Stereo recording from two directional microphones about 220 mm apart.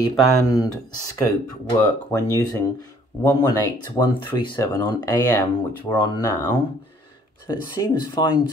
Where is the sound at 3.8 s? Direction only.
20° left (ahead or behind).